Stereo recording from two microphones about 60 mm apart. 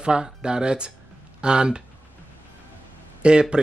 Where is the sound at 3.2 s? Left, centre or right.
Centre.